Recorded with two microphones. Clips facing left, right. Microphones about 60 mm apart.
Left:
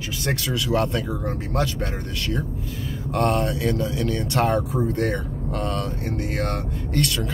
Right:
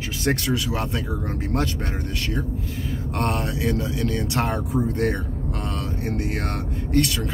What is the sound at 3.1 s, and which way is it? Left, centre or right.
Speech, right.